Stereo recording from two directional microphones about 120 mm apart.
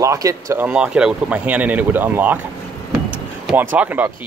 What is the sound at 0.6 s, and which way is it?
Speech, 10° right (ahead or behind).